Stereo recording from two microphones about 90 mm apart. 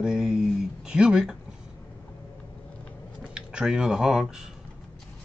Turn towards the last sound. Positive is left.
turn(degrees=-5)  # may be behind; listen again after turning